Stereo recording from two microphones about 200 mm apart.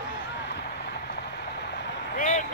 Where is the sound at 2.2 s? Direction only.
40° left (ahead or behind).